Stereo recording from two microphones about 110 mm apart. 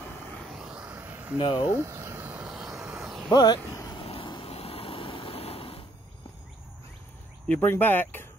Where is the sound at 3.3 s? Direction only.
40° left (ahead or behind).